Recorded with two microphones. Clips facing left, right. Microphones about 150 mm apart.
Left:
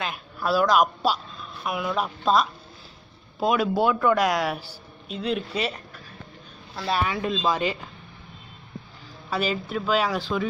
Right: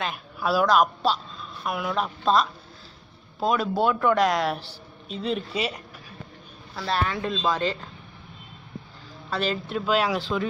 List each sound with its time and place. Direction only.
0.0 s a man's voice: centre (ahead or behind)
6.7 s a man's voice: 10° left (ahead or behind)
9.3 s speech: 5° left (ahead or behind)